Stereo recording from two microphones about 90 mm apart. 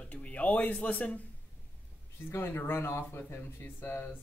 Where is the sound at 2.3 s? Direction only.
25° left (ahead or behind).